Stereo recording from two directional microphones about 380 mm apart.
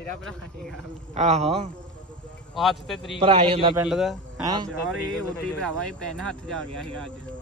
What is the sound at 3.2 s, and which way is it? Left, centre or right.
Speech, centre.